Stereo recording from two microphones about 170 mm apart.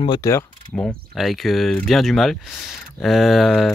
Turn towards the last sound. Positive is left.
turn(degrees=0)  # may be behind; listen again after turning